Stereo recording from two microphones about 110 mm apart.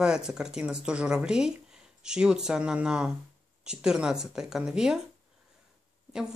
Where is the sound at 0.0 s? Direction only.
5° right (ahead or behind).